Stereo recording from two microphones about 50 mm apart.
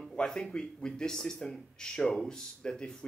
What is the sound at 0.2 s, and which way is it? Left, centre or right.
Speech, centre.